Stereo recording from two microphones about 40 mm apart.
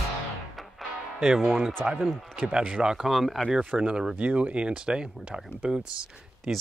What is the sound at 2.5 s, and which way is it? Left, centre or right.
Speech, right.